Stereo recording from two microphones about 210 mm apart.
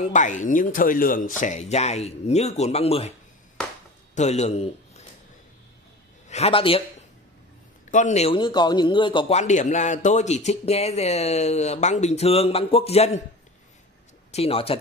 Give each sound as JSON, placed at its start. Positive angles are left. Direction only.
{"t": 0.0, "sound": "a man's voice", "side_deg": 35}
{"t": 4.1, "sound": "a man's voice", "side_deg": 30}
{"t": 6.2, "sound": "a man's voice", "side_deg": 30}
{"t": 7.9, "sound": "a man's voice", "side_deg": 35}
{"t": 14.3, "sound": "speech", "side_deg": 30}